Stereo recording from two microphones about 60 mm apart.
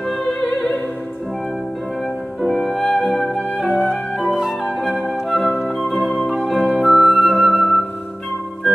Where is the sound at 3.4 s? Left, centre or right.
Centre.